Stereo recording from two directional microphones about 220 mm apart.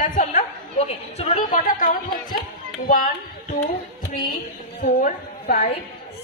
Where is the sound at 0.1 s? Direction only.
35° left (ahead or behind).